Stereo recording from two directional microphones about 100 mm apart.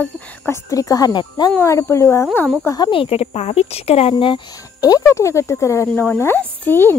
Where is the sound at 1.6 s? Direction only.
30° left (ahead or behind).